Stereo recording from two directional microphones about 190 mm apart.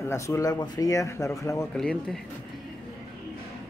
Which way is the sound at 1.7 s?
Centre (ahead or behind).